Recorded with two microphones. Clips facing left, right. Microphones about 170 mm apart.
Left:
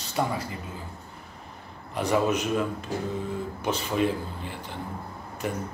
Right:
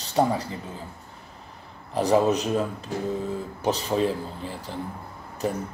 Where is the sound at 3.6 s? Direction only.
35° right (ahead or behind).